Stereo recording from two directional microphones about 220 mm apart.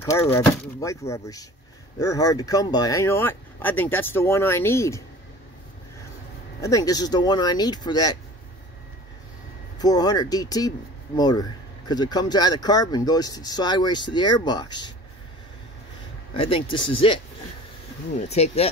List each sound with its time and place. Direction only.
0.0 s speech: 15° left (ahead or behind)
6.6 s speech: 15° left (ahead or behind)
9.8 s speech: 15° left (ahead or behind)
16.3 s speech: 25° left (ahead or behind)
18.3 s speech: 30° left (ahead or behind)